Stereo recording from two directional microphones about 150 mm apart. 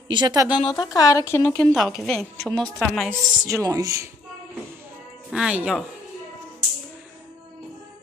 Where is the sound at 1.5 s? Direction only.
5° left (ahead or behind).